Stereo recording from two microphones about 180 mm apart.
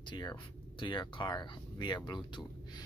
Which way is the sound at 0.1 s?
25° left (ahead or behind).